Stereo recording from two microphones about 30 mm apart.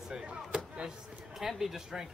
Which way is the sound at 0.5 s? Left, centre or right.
Right.